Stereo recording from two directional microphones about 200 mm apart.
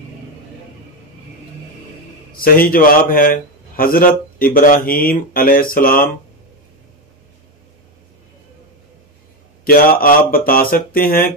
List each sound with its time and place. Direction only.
2.3 s a man's voice: 45° left (ahead or behind)
9.7 s a man's voice: 45° left (ahead or behind)